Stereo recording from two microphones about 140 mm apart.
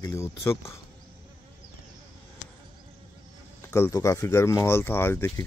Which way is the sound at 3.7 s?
20° left (ahead or behind).